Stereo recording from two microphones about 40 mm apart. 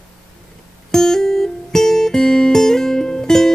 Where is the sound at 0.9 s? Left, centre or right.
Centre.